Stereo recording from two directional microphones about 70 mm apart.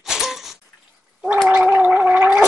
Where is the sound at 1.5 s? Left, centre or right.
Centre.